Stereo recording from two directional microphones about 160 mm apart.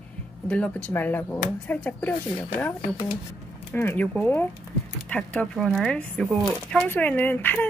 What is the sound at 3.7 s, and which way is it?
Speech, 10° left (ahead or behind).